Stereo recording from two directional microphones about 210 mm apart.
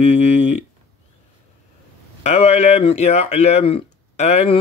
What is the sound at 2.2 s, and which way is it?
Speech, 30° left (ahead or behind).